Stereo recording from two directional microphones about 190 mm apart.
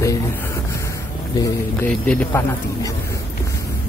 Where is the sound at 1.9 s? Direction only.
5° left (ahead or behind).